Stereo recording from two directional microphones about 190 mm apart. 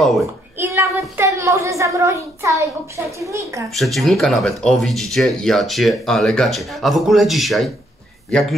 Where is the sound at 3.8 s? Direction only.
Centre (ahead or behind).